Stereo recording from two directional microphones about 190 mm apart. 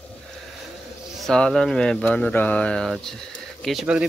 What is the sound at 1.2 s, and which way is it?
Speech, 5° left (ahead or behind).